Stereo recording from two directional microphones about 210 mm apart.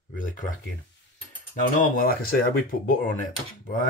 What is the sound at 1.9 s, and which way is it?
Speech, 45° left (ahead or behind).